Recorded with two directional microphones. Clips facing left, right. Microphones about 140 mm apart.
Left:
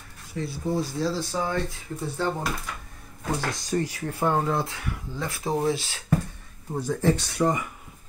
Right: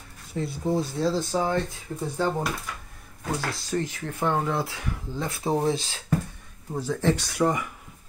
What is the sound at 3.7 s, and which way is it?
Speech, 10° left (ahead or behind).